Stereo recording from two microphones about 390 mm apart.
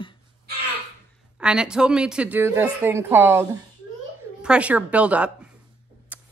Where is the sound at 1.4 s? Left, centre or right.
Centre.